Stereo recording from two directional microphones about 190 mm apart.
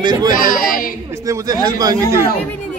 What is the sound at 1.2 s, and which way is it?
Speech, 20° right (ahead or behind).